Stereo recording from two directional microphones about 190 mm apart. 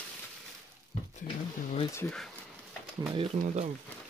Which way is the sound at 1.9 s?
15° left (ahead or behind).